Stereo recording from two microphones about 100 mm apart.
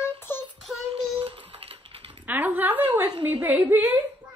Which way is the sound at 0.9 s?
65° right (ahead or behind).